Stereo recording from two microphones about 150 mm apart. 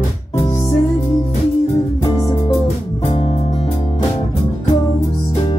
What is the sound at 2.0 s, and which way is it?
Music, 30° left (ahead or behind).